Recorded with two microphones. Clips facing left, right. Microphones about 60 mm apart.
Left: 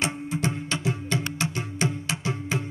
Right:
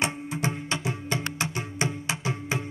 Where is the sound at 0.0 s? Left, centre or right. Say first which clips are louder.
Left 1 dB; right.